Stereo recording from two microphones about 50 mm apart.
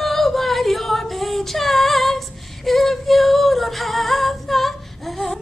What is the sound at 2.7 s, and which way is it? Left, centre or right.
Female singing, centre.